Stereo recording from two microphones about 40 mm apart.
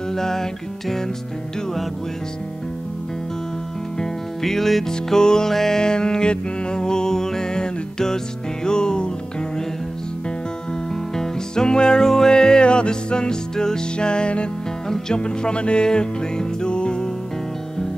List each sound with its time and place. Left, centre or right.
0.1 s music: centre
4.0 s music: centre
11.1 s music: centre